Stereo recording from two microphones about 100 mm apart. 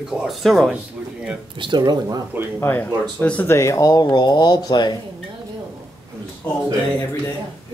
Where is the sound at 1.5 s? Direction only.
50° right (ahead or behind).